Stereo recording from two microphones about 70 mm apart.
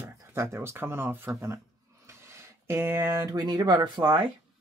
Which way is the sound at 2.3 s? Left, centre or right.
Right.